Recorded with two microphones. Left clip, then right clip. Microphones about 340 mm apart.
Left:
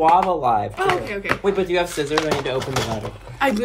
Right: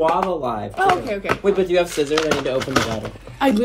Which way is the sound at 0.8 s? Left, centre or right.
Centre.